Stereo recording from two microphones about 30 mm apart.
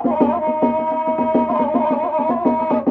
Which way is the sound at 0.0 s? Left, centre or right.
Left.